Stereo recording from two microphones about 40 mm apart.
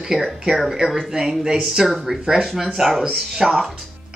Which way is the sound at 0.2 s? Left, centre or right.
Centre.